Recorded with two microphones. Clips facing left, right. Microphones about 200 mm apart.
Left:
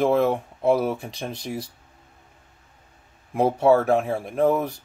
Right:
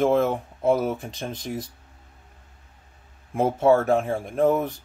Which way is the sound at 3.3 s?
Centre (ahead or behind).